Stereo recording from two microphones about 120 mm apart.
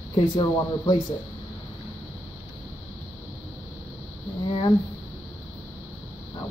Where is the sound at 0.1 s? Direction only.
40° left (ahead or behind).